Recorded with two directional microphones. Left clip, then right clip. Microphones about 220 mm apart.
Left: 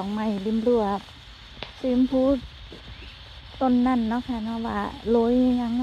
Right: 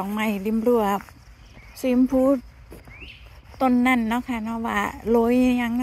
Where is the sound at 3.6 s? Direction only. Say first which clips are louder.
Right 3 dB; 25° right (ahead or behind).